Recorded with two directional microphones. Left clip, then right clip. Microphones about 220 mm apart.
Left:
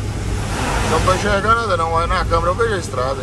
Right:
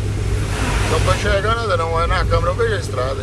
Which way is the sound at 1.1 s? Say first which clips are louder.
Left 4 dB; 25° left (ahead or behind).